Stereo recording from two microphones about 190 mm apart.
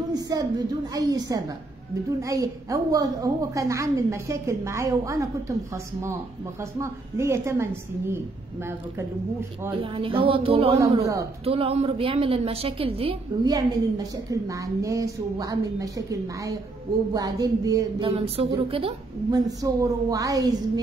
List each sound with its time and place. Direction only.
0.1 s a woman's voice: 20° right (ahead or behind)
9.8 s a woman's voice: 30° right (ahead or behind)
13.5 s a woman's voice: 20° right (ahead or behind)
18.1 s a woman's voice: 30° right (ahead or behind)
19.6 s a woman's voice: 15° right (ahead or behind)